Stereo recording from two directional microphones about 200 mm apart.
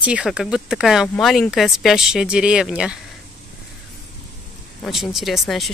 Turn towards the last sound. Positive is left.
turn(degrees=0)  # may be behind; listen again after turning